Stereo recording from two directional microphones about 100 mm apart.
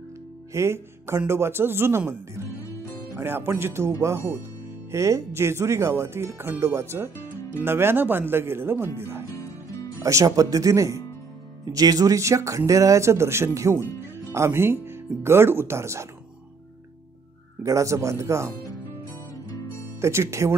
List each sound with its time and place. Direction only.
0.5 s speech: 30° right (ahead or behind)
17.6 s speech: 35° right (ahead or behind)
20.0 s speech: 30° right (ahead or behind)